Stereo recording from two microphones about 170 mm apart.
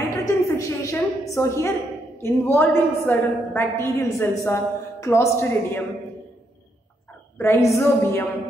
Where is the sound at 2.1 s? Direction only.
15° left (ahead or behind).